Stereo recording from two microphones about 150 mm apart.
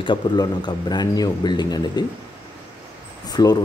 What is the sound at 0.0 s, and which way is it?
Speech, 30° left (ahead or behind).